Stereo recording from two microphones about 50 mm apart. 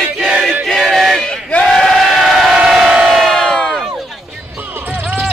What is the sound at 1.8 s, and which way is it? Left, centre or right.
Crowd, centre.